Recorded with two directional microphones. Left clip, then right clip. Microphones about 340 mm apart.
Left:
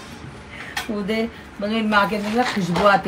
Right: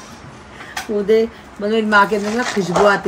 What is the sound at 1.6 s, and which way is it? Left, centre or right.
A woman's voice, centre.